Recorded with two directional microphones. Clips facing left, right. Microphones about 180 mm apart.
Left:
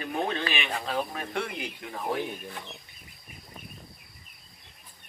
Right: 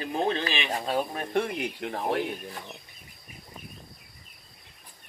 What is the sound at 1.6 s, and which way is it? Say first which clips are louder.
Speech: right 5 dB; 70° right (ahead or behind).